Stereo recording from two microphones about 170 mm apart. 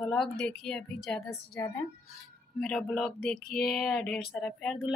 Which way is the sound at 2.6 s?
5° left (ahead or behind).